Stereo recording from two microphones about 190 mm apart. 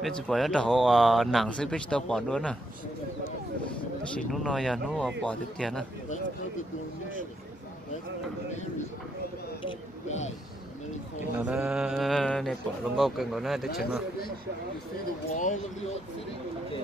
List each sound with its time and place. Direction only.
0.0 s speech: centre (ahead or behind)
4.3 s speech: centre (ahead or behind)
10.0 s speech: 35° left (ahead or behind)
11.1 s speech: 5° right (ahead or behind)
15.3 s speech: 45° left (ahead or behind)